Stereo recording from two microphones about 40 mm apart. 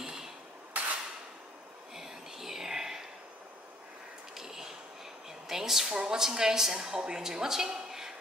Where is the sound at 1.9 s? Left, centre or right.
Centre.